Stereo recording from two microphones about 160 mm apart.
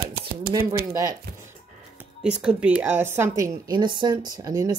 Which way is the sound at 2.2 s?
5° right (ahead or behind).